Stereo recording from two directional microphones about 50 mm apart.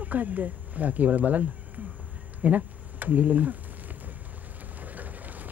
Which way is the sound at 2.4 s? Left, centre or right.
Right.